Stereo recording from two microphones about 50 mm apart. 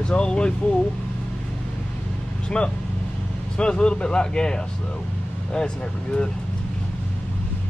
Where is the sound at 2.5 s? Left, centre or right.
Centre.